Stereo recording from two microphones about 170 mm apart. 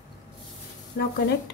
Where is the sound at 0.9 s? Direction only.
75° left (ahead or behind).